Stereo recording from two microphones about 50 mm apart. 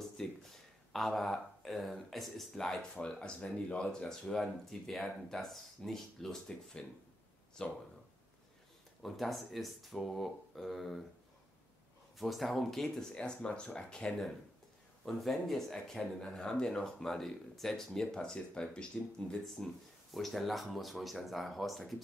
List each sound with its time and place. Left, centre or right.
0.0 s speech: centre
2.8 s speech: centre
9.0 s speech: centre
12.2 s speech: centre
13.1 s speech: centre
14.0 s speech: centre
19.3 s speech: centre